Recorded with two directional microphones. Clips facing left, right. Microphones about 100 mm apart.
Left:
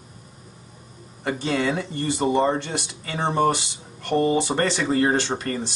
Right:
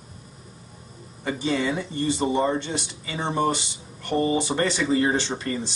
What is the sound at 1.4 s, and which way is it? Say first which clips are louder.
Speech: even; 60° left (ahead or behind).